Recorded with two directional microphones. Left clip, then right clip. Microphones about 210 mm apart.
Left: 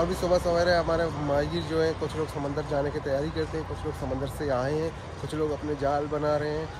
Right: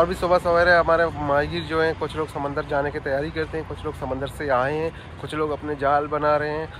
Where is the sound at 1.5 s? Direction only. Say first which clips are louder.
Right 3 dB; 50° left (ahead or behind).